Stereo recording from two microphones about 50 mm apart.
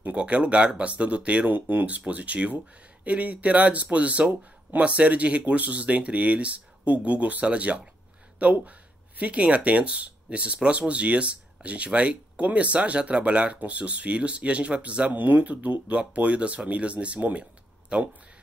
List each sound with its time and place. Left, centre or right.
0.0 s speech: right
1.5 s speech: right; by 18.1 s centre